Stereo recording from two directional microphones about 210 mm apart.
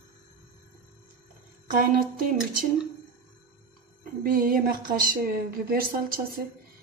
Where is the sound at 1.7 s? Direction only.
45° right (ahead or behind).